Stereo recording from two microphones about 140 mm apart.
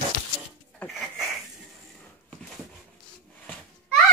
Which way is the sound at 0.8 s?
Centre (ahead or behind).